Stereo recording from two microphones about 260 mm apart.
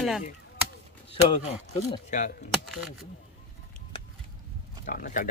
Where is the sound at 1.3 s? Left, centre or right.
Left.